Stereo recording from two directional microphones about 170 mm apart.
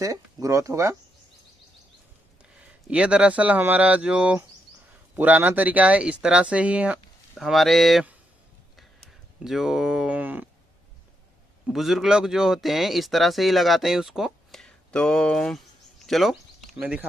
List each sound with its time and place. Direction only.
0.0 s speech: 20° right (ahead or behind)
2.9 s speech: 5° right (ahead or behind)
9.4 s speech: centre (ahead or behind)
11.6 s speech: centre (ahead or behind)